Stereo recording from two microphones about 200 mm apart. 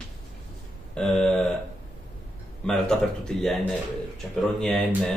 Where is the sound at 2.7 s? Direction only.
5° left (ahead or behind).